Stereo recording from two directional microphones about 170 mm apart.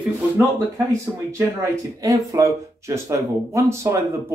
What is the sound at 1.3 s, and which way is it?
Speech, 20° right (ahead or behind).